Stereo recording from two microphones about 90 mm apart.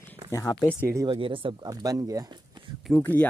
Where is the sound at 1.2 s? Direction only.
75° right (ahead or behind).